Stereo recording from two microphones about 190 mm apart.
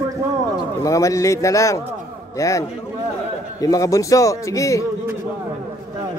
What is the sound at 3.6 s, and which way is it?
A man's voice, 20° left (ahead or behind).